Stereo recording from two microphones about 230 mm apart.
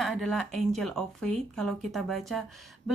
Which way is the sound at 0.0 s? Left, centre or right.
Centre.